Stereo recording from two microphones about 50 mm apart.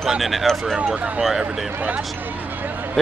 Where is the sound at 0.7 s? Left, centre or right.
Right.